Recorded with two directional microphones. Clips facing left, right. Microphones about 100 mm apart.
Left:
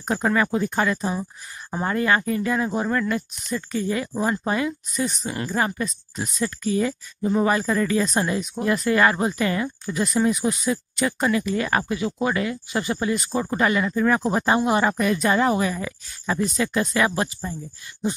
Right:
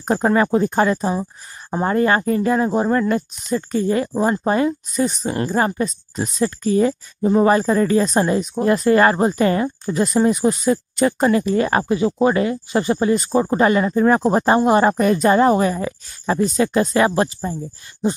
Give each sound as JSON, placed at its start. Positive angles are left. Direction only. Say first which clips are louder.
{"t": 0.0, "sound": "speech", "louder": "right 5 dB", "side_deg": -35}